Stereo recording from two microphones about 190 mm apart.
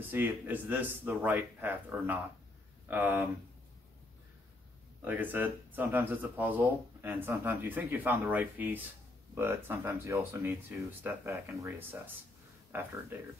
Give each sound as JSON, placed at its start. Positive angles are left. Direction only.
{"t": 0.0, "sound": "speech", "side_deg": -10}
{"t": 5.0, "sound": "speech", "side_deg": -10}